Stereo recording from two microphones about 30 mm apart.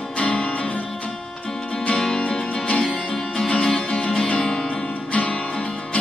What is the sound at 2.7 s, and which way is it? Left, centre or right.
Music, left.